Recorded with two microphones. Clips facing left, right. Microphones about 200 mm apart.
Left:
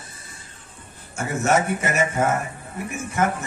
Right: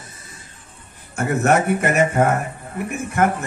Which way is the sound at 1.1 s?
60° right (ahead or behind).